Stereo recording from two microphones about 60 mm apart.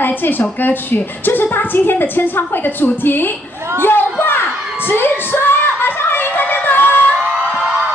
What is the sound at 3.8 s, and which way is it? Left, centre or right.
Singing, left.